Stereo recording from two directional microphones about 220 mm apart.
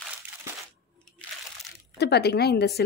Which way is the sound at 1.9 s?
50° left (ahead or behind).